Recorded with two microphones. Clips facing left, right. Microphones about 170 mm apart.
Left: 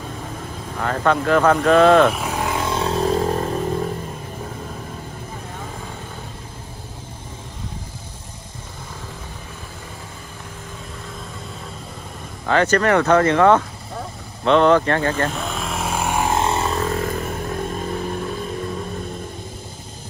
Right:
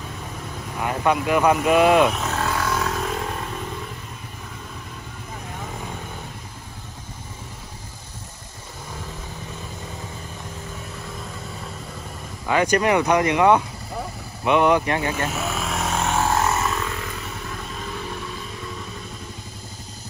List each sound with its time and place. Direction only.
0.7 s speech: 15° right (ahead or behind)
2.0 s vehicle: 10° left (ahead or behind); by 3.9 s 40° left (ahead or behind)
12.4 s speech: 10° right (ahead or behind)
14.4 s vehicle: 15° right (ahead or behind); by 16.3 s 15° left (ahead or behind)
16.3 s vehicle: 30° left (ahead or behind); by 18.3 s 50° left (ahead or behind)